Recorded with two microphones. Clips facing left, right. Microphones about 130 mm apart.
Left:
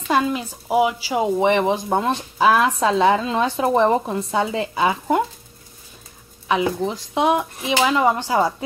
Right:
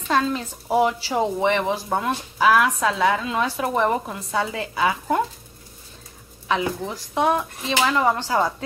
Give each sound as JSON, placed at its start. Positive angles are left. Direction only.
{"t": 0.1, "sound": "speech", "side_deg": 10}
{"t": 1.4, "sound": "speech", "side_deg": 20}
{"t": 6.5, "sound": "speech", "side_deg": 20}